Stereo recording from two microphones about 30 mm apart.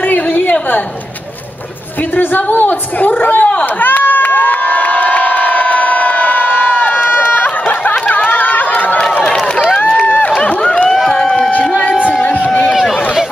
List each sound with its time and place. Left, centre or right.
0.4 s a sound: left
2.1 s a woman's voice: left
3.8 s cheering: left
7.6 s a sound: left
8.7 s crowd: left
10.4 s run: left